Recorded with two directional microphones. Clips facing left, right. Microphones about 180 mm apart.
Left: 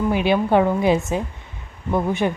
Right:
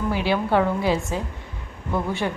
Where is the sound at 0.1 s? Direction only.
20° left (ahead or behind).